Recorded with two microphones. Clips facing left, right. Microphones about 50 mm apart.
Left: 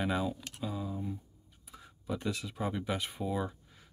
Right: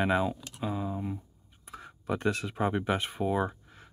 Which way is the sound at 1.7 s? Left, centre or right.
Right.